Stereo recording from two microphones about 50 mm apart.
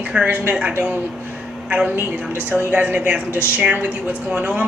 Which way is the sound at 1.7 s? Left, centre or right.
Right.